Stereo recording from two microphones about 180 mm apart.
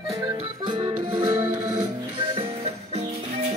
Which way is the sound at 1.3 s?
15° right (ahead or behind).